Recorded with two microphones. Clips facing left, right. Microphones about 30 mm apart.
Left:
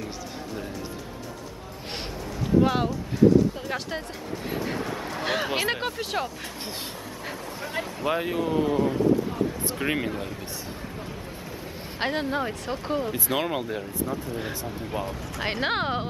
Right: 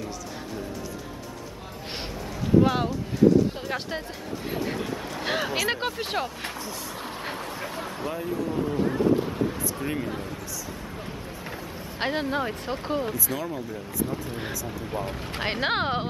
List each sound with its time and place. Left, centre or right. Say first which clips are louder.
2.6 s speech: even; centre
4.5 s vehicle: even; centre
5.7 s speech: even; centre
7.7 s speech: left 9 dB; left
9.8 s speech: left 3 dB; left
12.0 s speech: even; centre
13.1 s speech: left 3 dB; left
13.5 s speech: left 4 dB; left
14.3 s speech: left 1 dB; centre